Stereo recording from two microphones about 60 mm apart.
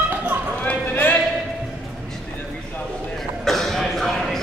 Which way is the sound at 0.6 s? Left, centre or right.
Left.